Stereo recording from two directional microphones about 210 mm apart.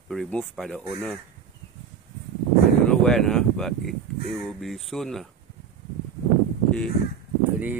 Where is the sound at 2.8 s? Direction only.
5° left (ahead or behind).